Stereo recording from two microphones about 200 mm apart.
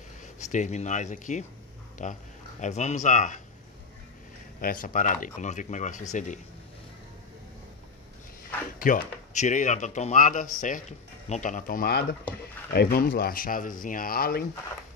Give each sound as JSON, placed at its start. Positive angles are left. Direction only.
{"t": 0.2, "sound": "speech", "side_deg": 40}
{"t": 4.6, "sound": "speech", "side_deg": 45}
{"t": 8.7, "sound": "speech", "side_deg": 40}